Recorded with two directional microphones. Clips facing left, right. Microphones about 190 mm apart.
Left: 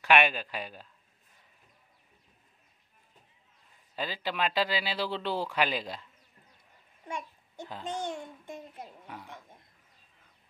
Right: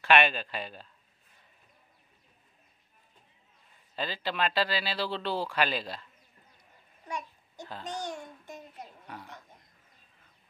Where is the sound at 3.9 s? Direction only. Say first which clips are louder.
Even; 10° left (ahead or behind).